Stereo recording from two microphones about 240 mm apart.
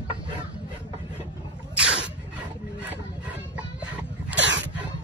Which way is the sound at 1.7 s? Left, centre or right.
Centre.